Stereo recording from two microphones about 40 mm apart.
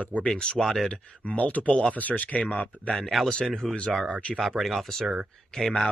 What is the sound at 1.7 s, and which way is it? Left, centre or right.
Speech, left.